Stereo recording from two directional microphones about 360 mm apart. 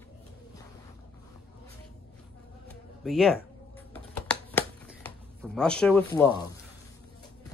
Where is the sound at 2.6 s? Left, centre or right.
Centre.